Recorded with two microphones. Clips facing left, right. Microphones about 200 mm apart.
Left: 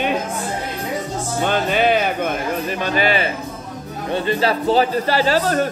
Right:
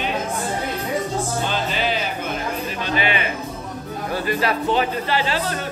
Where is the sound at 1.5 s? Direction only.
55° left (ahead or behind).